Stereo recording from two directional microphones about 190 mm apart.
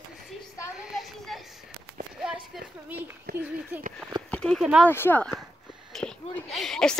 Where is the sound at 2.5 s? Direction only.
10° right (ahead or behind).